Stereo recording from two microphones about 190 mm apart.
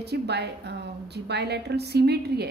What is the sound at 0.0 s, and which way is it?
A woman's voice, 60° right (ahead or behind).